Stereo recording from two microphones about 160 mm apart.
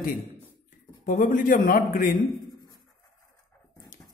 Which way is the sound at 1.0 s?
60° left (ahead or behind).